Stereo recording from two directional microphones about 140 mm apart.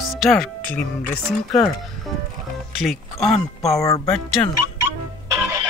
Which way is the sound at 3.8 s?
25° left (ahead or behind).